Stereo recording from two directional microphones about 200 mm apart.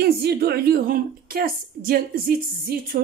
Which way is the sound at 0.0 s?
50° right (ahead or behind).